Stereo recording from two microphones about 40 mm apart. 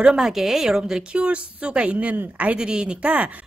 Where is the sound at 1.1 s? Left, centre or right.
Right.